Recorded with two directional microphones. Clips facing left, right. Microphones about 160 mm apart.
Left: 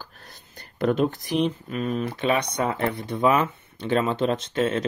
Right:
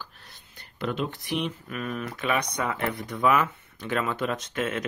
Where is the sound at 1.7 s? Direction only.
25° left (ahead or behind).